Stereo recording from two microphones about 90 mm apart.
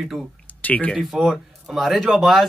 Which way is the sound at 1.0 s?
5° right (ahead or behind).